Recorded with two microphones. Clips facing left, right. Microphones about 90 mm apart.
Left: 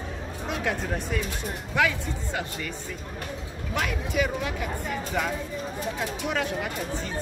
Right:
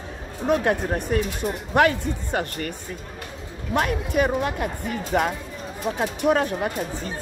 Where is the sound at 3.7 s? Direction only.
45° right (ahead or behind).